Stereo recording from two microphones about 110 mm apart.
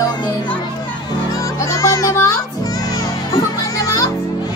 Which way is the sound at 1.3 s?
30° left (ahead or behind).